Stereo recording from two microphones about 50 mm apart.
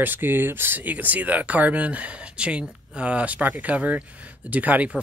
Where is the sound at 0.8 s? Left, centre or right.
Right.